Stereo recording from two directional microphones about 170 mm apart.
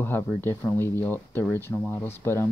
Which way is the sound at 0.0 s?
10° left (ahead or behind).